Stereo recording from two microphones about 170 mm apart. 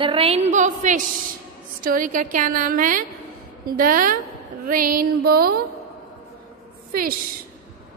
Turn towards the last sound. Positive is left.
turn(degrees=-60)  # may be behind; listen again after turning